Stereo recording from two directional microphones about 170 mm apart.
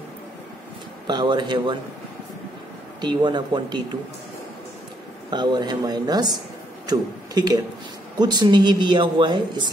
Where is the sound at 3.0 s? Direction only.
25° right (ahead or behind).